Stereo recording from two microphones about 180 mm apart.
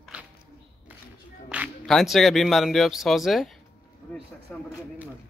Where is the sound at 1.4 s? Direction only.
5° right (ahead or behind).